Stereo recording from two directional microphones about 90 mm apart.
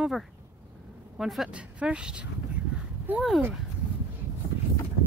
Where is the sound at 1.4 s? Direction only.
10° right (ahead or behind).